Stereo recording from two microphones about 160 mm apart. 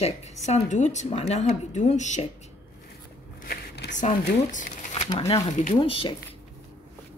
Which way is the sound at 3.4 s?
90° left.